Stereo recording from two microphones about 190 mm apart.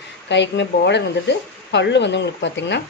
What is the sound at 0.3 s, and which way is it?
Speech, 65° left (ahead or behind).